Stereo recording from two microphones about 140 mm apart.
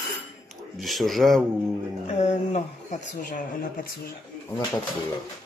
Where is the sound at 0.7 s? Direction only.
Centre (ahead or behind).